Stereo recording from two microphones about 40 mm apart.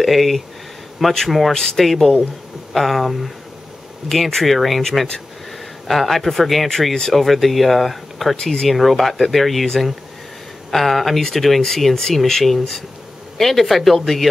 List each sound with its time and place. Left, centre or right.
0.0 s speech: centre
1.5 s speech: centre
1.9 s speech: centre
8.4 s speech: centre
8.6 s speech: centre
10.7 s speech: centre